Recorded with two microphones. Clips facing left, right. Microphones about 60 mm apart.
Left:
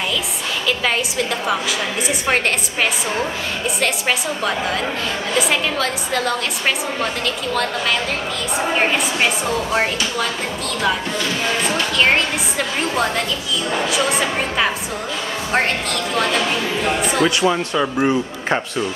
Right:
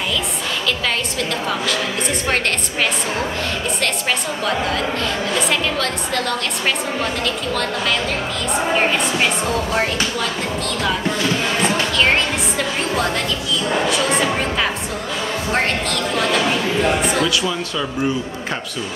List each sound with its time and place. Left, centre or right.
2.2 s a woman's voice: centre
5.5 s a woman's voice: centre
8.5 s a woman's voice: centre
12.0 s a woman's voice: centre
17.2 s a man's voice: left